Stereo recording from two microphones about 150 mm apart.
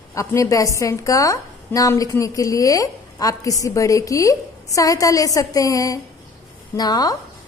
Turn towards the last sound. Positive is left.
turn(degrees=25)  # may be behind; listen again after turning